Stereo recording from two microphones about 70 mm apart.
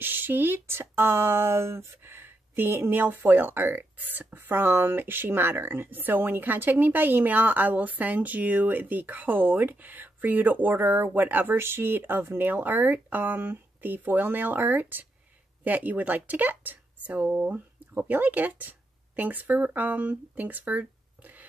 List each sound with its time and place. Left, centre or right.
0.0 s speech: right